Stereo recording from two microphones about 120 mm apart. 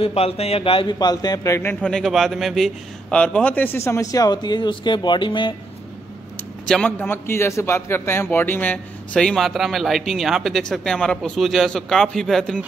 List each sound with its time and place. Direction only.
0.0 s a man's voice: 55° left (ahead or behind)
0.9 s a man's voice: 35° left (ahead or behind)
1.7 s a man's voice: 10° left (ahead or behind)
3.2 s a man's voice: 10° left (ahead or behind); by 5.5 s 40° left (ahead or behind)
6.7 s a man's voice: 5° left (ahead or behind)
7.1 s a man's voice: 20° left (ahead or behind); by 12.5 s 5° left (ahead or behind)